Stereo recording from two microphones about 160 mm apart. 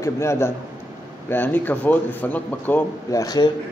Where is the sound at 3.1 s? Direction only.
25° left (ahead or behind).